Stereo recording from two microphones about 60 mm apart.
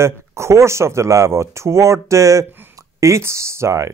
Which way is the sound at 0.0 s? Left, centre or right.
Right.